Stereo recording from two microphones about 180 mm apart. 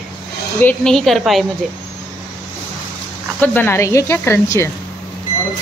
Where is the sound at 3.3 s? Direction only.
10° left (ahead or behind).